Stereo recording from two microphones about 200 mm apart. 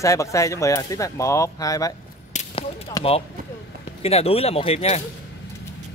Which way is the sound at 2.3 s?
30° left (ahead or behind).